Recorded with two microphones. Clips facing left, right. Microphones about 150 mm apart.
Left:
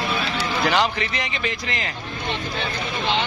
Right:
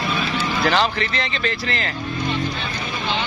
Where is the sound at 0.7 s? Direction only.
15° left (ahead or behind).